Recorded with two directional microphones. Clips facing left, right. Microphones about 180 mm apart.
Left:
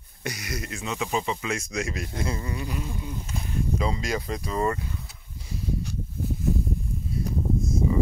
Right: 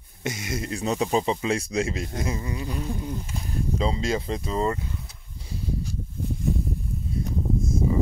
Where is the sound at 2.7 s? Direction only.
35° right (ahead or behind).